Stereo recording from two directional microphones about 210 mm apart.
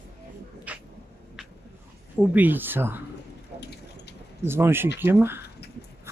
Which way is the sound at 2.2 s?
10° right (ahead or behind).